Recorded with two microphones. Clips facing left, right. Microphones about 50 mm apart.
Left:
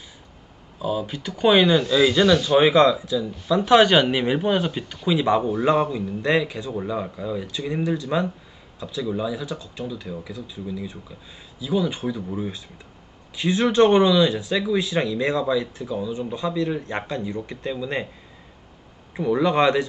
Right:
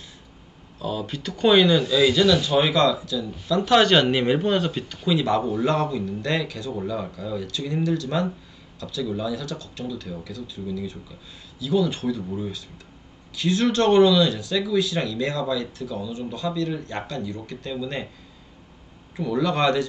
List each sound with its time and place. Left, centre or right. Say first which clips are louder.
0.7 s speech: left 3 dB; centre
19.1 s speech: left 4 dB; left